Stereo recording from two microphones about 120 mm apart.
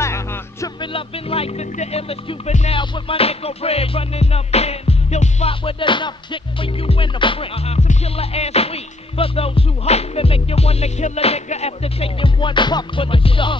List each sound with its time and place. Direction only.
0.0 s music: 25° left (ahead or behind)
0.7 s music: 50° left (ahead or behind)
5.5 s music: 45° left (ahead or behind)